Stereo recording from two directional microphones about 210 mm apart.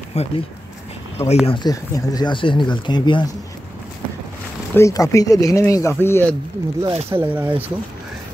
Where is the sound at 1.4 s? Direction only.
20° left (ahead or behind).